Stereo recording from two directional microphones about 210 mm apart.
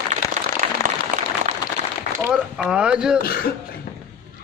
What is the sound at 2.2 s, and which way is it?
Music, 5° right (ahead or behind).